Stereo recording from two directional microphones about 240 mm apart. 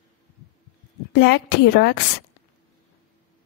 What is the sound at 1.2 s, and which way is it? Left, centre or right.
Speech, left.